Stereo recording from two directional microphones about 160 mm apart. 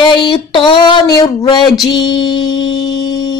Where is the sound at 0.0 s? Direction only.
30° left (ahead or behind).